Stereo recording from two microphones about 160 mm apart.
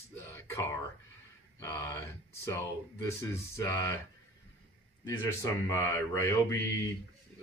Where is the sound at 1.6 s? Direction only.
15° left (ahead or behind).